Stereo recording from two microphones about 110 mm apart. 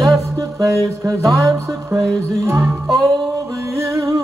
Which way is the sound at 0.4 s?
30° right (ahead or behind).